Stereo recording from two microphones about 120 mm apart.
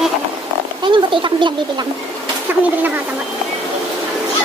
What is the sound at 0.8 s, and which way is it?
Speech, 40° right (ahead or behind).